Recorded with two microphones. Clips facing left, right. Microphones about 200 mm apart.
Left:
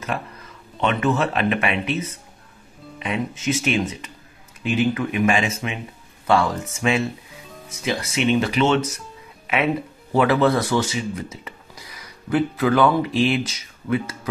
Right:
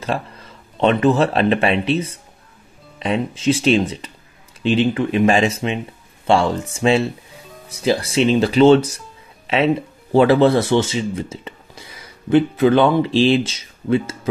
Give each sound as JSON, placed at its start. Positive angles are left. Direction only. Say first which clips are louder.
{"t": 0.0, "sound": "speech", "louder": "right 4 dB", "side_deg": -30}